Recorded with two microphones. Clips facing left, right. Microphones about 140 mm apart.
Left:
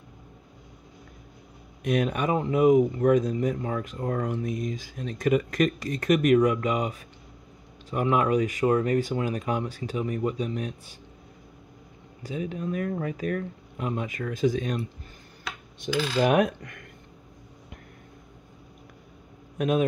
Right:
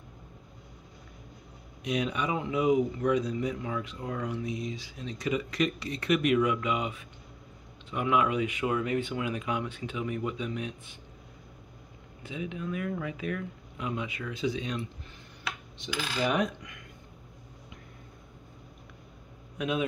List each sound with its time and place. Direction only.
1.8 s speech: 50° left (ahead or behind)
12.2 s speech: 40° left (ahead or behind)
15.8 s speech: 55° left (ahead or behind)
19.6 s speech: 45° left (ahead or behind)